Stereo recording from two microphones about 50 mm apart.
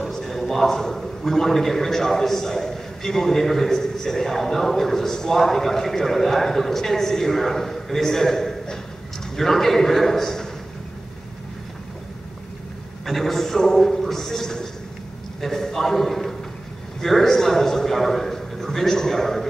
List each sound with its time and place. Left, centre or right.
0.0 s a man's voice: centre
13.0 s a man's voice: centre